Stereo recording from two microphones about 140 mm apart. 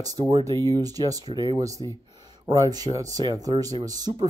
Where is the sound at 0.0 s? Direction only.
25° right (ahead or behind).